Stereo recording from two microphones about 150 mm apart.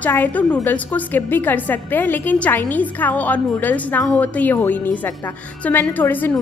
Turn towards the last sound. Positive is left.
turn(degrees=10)  # may be behind; listen again after turning